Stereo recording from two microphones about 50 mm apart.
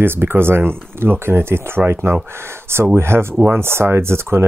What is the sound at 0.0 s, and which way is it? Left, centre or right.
Speech, right.